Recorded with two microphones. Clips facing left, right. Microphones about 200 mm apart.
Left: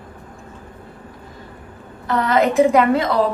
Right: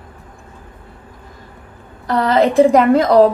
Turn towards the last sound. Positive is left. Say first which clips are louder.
# right 6 dB
turn(degrees=-40)  # may be behind; listen again after turning